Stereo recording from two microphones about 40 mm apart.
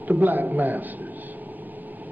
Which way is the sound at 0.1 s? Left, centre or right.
Right.